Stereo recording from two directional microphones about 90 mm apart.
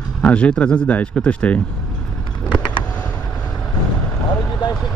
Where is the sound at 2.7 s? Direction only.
20° left (ahead or behind).